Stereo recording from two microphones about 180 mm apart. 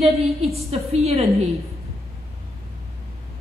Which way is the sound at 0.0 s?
35° right (ahead or behind).